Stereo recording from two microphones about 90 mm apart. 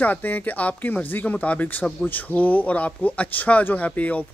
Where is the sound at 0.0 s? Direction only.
20° left (ahead or behind).